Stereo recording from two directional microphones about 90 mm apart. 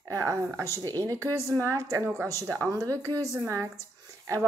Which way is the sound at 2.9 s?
25° left (ahead or behind).